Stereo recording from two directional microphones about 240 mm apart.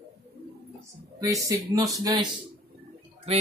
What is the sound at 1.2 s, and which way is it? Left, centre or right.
Speech, centre.